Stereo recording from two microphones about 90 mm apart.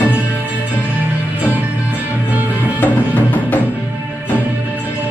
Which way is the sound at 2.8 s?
15° left (ahead or behind).